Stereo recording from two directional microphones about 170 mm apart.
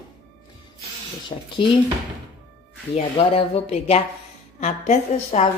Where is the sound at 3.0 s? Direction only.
35° left (ahead or behind).